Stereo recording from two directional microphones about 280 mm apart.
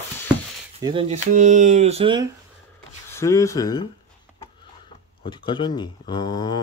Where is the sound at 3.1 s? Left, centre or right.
Centre.